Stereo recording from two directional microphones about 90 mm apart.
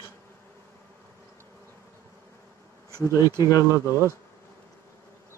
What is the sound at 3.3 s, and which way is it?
Speech, 40° left (ahead or behind).